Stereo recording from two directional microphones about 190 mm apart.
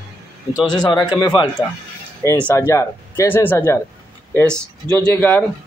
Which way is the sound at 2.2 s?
10° left (ahead or behind).